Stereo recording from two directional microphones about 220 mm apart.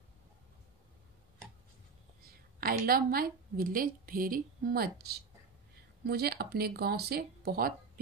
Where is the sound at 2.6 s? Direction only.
40° right (ahead or behind).